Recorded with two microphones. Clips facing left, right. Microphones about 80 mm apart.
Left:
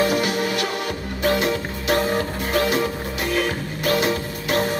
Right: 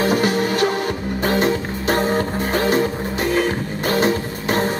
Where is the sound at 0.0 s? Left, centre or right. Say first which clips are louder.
Right 3 dB; right.